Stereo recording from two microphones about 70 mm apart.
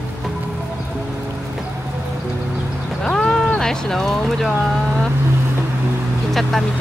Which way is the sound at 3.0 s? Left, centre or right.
Centre.